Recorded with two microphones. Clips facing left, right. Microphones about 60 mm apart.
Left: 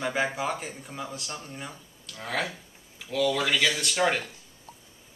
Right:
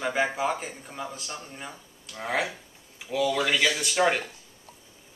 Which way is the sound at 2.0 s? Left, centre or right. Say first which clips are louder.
Right 3 dB; right.